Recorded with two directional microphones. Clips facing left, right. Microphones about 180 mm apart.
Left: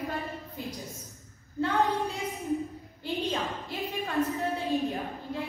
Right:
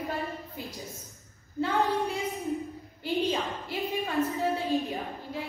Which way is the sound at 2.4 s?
Centre (ahead or behind).